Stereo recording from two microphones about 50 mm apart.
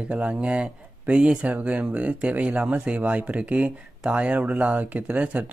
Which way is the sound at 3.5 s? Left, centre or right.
Centre.